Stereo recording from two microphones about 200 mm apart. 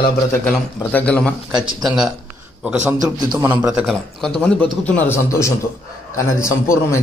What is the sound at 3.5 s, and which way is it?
A man's voice, 5° right (ahead or behind).